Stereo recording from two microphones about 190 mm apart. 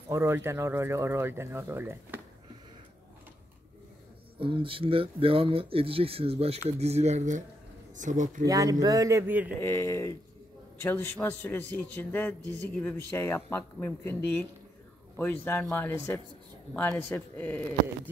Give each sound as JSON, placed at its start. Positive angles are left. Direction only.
{"t": 0.1, "sound": "speech", "side_deg": -15}
{"t": 4.4, "sound": "speech", "side_deg": -25}
{"t": 8.5, "sound": "speech", "side_deg": -20}
{"t": 9.6, "sound": "a man's voice", "side_deg": 10}
{"t": 15.1, "sound": "a man's voice", "side_deg": 10}